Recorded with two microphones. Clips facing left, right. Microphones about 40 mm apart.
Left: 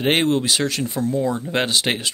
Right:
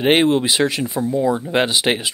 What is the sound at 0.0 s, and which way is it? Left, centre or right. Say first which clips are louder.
Speech: right 4 dB; centre.